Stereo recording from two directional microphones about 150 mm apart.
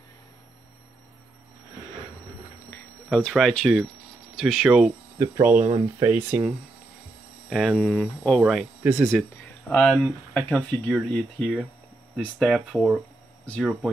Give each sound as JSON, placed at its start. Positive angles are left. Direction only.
{"t": 3.1, "sound": "speech", "side_deg": 5}
{"t": 5.2, "sound": "speech", "side_deg": -15}
{"t": 7.4, "sound": "speech", "side_deg": 0}
{"t": 9.7, "sound": "speech", "side_deg": 10}